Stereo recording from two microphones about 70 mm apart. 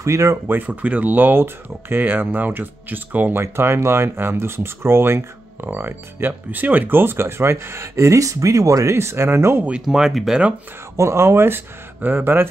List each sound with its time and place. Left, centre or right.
0.0 s speech: right
0.5 s speech: right
9.7 s speech: centre
11.0 s speech: right